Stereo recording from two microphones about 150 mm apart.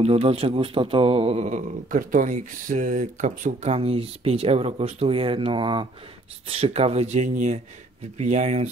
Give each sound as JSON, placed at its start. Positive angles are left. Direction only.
{"t": 0.0, "sound": "speech", "side_deg": -40}
{"t": 6.4, "sound": "speech", "side_deg": -45}